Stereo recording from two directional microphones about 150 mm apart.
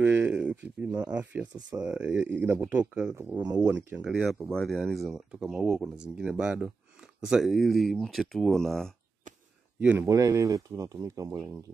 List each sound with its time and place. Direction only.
0.0 s speech: 10° right (ahead or behind)
9.8 s speech: 10° right (ahead or behind)
10.0 s speech: 20° right (ahead or behind)